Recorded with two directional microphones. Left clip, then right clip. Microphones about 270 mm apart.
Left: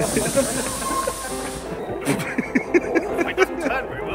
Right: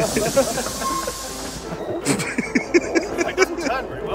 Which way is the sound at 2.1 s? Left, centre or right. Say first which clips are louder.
Right 1 dB; centre.